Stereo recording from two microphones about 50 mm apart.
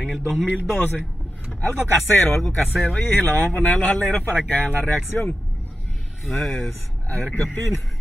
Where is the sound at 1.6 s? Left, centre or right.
Left.